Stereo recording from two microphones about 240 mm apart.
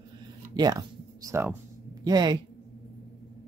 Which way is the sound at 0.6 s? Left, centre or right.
Centre.